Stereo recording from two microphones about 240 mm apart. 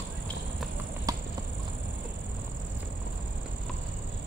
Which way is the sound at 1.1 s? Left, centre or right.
Centre.